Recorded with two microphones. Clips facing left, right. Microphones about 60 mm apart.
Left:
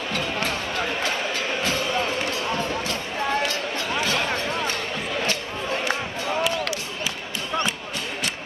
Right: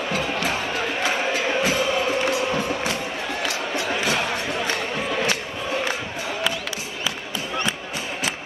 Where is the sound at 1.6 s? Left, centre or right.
Centre.